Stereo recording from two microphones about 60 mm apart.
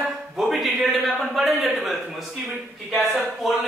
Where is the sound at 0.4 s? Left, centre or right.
Centre.